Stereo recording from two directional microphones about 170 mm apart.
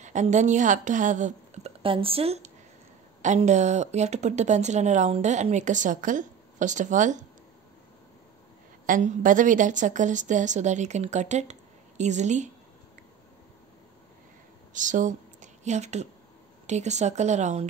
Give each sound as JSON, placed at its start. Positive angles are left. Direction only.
{"t": 0.0, "sound": "a woman's voice", "side_deg": -45}
{"t": 8.8, "sound": "speech", "side_deg": -50}
{"t": 14.7, "sound": "speech", "side_deg": -50}